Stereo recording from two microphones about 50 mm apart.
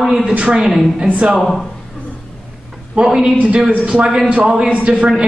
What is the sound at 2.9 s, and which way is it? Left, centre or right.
A woman's voice, centre.